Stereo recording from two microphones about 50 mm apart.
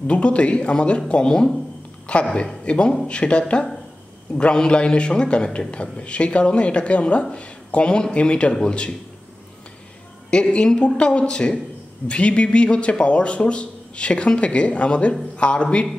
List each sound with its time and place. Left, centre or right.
0.0 s a man's voice: left
10.5 s a man's voice: left